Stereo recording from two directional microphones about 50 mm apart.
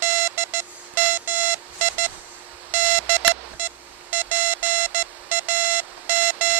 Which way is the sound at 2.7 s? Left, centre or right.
Right.